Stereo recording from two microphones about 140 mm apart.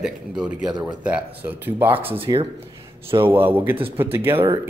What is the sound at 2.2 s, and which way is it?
Speech, 35° right (ahead or behind).